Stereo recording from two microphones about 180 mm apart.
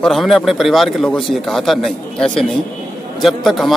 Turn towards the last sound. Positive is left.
turn(degrees=0)  # may be behind; listen again after turning